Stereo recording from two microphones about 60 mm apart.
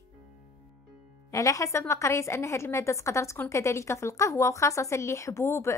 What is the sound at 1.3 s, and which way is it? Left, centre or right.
A woman's voice, left.